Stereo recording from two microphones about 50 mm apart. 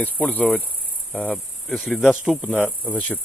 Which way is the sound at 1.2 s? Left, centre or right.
Centre.